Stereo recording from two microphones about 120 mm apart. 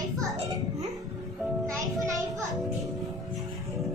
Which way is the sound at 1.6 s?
25° right (ahead or behind).